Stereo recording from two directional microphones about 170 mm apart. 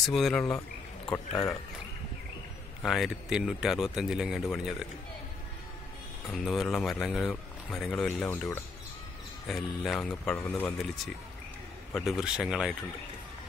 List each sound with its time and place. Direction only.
0.0 s a man's voice: centre (ahead or behind)
1.1 s speech: 15° left (ahead or behind)
2.8 s a man's voice: centre (ahead or behind)
6.3 s a man's voice: centre (ahead or behind)
11.9 s a man's voice: centre (ahead or behind)